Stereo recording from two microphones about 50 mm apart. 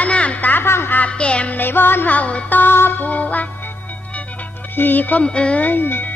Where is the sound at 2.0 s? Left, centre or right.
Left.